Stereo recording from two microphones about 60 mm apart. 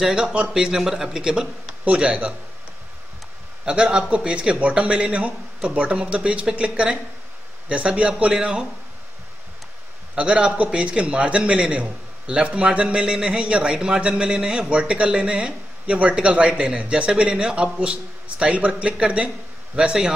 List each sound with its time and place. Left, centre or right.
0.0 s a man's voice: centre
3.6 s a man's voice: centre
10.1 s a man's voice: centre